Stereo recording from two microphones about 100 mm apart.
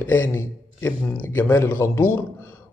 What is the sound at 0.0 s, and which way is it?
Speech, 20° left (ahead or behind).